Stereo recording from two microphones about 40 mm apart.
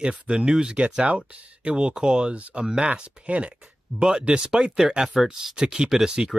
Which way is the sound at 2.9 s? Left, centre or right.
Right.